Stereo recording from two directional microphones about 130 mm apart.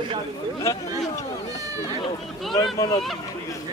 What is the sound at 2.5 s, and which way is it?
Speech, 30° left (ahead or behind).